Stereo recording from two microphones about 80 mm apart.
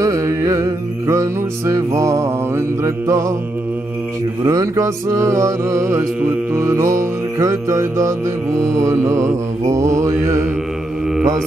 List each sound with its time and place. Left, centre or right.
0.0 s music: right
4.4 s mantra: right